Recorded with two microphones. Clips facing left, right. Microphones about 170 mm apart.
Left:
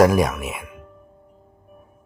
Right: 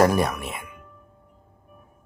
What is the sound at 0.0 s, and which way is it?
Music, 5° left (ahead or behind).